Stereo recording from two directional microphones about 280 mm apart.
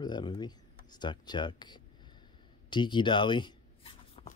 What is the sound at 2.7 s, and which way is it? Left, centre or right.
Writing, centre.